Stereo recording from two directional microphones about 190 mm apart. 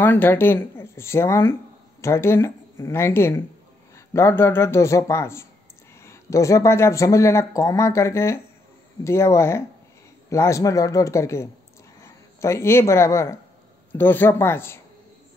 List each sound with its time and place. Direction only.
0.0 s speech: 10° left (ahead or behind)